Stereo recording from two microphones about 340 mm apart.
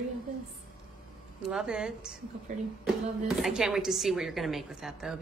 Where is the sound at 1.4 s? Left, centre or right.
Centre.